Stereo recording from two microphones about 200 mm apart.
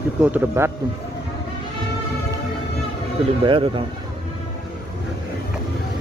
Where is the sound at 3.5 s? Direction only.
25° right (ahead or behind).